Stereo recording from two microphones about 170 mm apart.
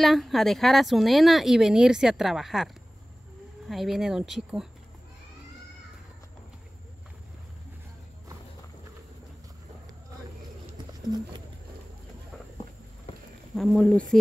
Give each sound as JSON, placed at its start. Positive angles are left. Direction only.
{"t": 0.0, "sound": "speech", "side_deg": 0}
{"t": 13.6, "sound": "speech", "side_deg": 5}